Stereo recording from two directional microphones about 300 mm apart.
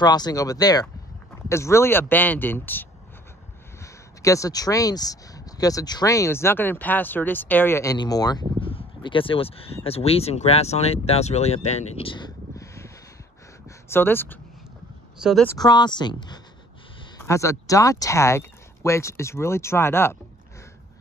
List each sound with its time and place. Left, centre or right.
0.0 s speech: centre
15.5 s speech: centre